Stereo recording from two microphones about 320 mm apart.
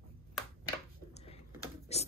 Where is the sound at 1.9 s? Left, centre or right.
Centre.